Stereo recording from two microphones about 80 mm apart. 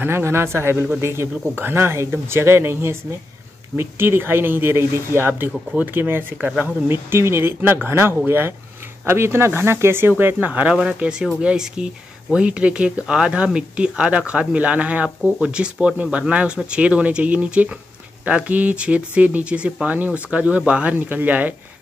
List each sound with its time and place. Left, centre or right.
0.0 s speech: right